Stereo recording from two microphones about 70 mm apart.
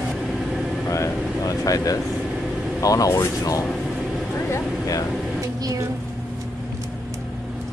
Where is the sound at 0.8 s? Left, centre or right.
Left.